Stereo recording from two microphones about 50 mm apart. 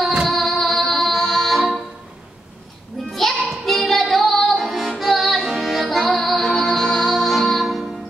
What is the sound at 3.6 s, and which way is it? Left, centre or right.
Child singing, centre.